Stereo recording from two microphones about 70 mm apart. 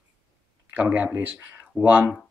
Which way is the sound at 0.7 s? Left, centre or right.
Right.